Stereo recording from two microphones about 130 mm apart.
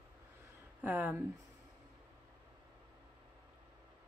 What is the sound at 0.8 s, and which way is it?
Speech, 15° right (ahead or behind).